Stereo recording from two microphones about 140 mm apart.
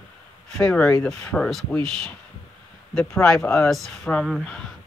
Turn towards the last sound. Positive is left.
turn(degrees=5)  # may be behind; listen again after turning